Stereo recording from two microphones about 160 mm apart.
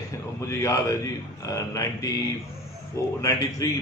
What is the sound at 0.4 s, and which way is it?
Speech, 20° left (ahead or behind).